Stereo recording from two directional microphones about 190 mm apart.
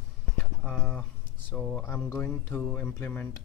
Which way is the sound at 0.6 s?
10° left (ahead or behind).